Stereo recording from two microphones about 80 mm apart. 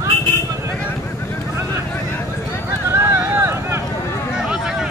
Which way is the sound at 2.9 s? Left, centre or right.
Right.